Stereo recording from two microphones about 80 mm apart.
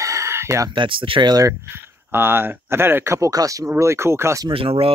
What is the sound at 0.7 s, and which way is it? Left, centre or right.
Speech, right.